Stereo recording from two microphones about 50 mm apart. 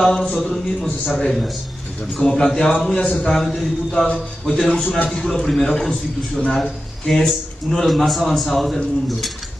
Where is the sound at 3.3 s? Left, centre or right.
Centre.